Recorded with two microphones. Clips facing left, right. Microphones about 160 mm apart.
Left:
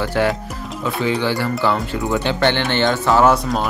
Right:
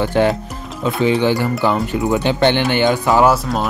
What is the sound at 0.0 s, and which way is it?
Speech, 20° right (ahead or behind).